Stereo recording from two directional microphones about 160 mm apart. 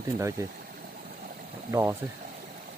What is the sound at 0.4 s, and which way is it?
Speech, 20° right (ahead or behind).